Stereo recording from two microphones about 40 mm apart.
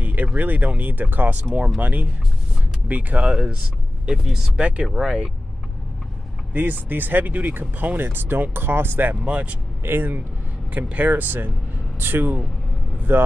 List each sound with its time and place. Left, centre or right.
0.0 s a sound: right
0.4 s speech: right
3.3 s speech: right
4.2 s speech: centre
4.6 s speech: right
4.8 s speech: centre
6.5 s speech: right
9.1 s speech: right
9.8 s speech: right
10.7 s speech: right
13.1 s speech: right